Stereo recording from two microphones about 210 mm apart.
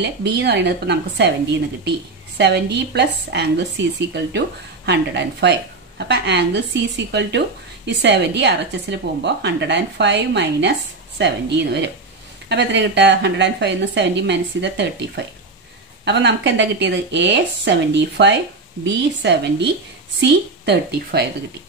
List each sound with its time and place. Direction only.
0.0 s a woman's voice: 55° right (ahead or behind)